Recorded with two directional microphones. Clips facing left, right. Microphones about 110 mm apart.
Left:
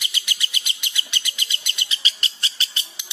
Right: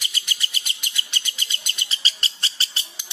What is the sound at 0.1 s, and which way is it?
Bird, 35° right (ahead or behind).